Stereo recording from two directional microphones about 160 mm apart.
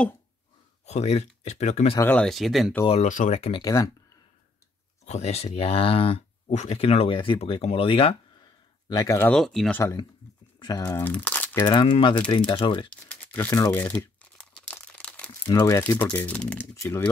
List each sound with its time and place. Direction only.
0.8 s speech: 40° left (ahead or behind)
2.0 s speech: 10° left (ahead or behind)
2.9 s speech: 50° left (ahead or behind)
3.6 s speech: 20° left (ahead or behind)
5.0 s speech: 45° left (ahead or behind)
8.8 s speech: 25° left (ahead or behind)
9.3 s speech: centre (ahead or behind)
9.8 s speech: 15° left (ahead or behind)
11.1 s speech: 10° left (ahead or behind)
11.6 s speech: 30° left (ahead or behind)
12.9 s crumpling: 10° left (ahead or behind)
15.4 s speech: 25° left (ahead or behind)
15.8 s speech: 10° left (ahead or behind)